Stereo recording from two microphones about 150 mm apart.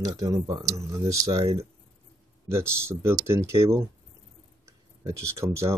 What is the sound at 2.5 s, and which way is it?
Speech, 15° right (ahead or behind).